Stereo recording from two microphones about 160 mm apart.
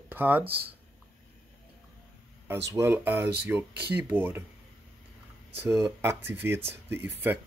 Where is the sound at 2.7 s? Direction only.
15° right (ahead or behind).